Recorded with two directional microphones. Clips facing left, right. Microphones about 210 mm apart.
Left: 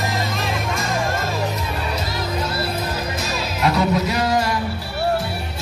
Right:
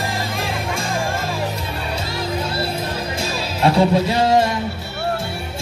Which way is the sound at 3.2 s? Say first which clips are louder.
Right 4 dB; 30° right (ahead or behind).